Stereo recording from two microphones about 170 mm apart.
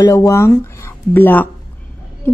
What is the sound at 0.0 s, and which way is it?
A woman's voice, 20° left (ahead or behind).